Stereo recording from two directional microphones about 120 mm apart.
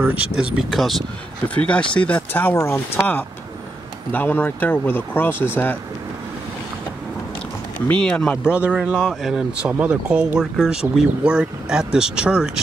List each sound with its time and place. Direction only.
0.0 s speech: 10° right (ahead or behind); by 5.8 s 15° left (ahead or behind)
7.9 s speech: 10° left (ahead or behind)
8.5 s speech: 10° right (ahead or behind)